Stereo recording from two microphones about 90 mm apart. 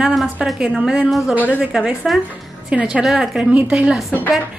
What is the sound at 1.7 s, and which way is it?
A woman's voice, 10° right (ahead or behind).